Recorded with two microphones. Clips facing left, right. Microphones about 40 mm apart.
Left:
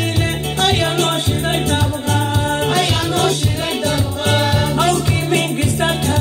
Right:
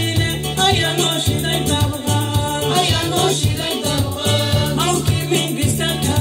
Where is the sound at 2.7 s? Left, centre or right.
Left.